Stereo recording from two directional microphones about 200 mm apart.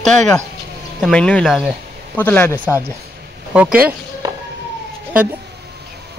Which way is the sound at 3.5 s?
5° right (ahead or behind).